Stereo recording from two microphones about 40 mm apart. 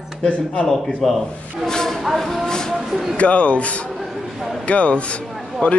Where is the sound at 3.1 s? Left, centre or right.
Left.